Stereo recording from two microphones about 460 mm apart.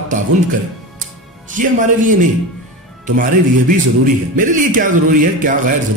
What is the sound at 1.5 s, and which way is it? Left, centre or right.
A man's voice, centre.